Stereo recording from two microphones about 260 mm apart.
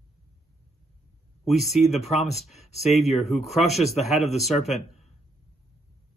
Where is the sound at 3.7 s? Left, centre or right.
Left.